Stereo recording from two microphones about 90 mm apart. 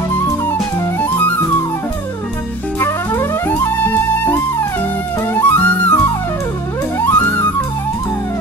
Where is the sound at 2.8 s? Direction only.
25° left (ahead or behind).